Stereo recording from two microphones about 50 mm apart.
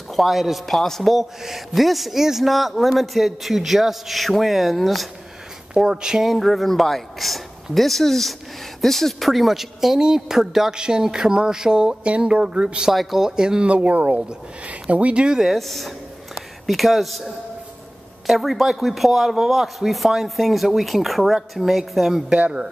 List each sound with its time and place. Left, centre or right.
0.1 s a man's voice: centre
0.7 s a man's voice: centre
5.8 s speech: centre
6.3 s a man's voice: centre
12.9 s a man's voice: centre
13.4 s speech: centre
15.2 s a man's voice: centre
22.3 s speech: right